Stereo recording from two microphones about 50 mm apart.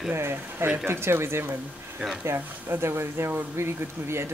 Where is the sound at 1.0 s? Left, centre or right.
Right.